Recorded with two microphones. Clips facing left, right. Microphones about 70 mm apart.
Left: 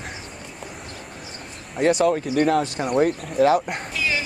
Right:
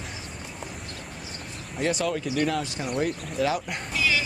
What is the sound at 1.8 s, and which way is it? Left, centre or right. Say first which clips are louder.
Speech: left 8 dB; left.